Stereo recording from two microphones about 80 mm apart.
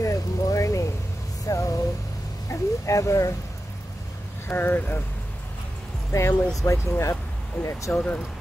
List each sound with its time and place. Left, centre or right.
0.0 s vehicle: left
1.5 s a sound: left
2.5 s speech: left
4.5 s speech: left
6.1 s speech: left